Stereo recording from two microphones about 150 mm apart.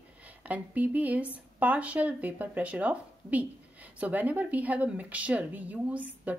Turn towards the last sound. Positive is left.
turn(degrees=-10)  # may be behind; listen again after turning